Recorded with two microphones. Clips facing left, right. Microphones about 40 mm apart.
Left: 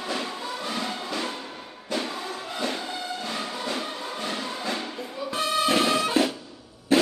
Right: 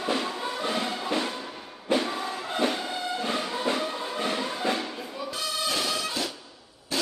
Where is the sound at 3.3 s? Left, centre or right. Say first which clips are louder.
Right 3 dB; right.